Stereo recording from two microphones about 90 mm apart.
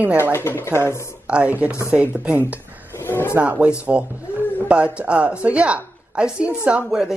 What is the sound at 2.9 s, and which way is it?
Music, 25° left (ahead or behind).